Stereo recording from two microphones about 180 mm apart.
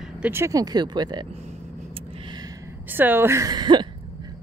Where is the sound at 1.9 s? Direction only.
25° right (ahead or behind).